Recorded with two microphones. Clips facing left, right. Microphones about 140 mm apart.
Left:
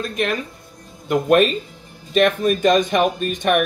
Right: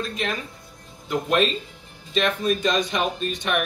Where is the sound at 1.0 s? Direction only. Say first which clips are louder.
Left 6 dB; 55° left (ahead or behind).